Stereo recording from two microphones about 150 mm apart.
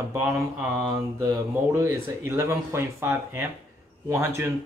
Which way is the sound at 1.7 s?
20° right (ahead or behind).